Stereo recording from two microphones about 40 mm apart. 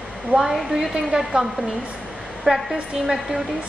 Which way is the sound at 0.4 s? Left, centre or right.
Centre.